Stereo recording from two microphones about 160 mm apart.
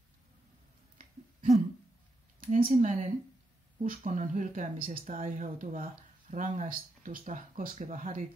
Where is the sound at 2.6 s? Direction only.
45° right (ahead or behind).